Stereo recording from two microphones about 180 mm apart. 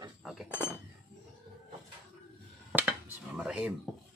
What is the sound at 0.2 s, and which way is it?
Cutlery, centre (ahead or behind).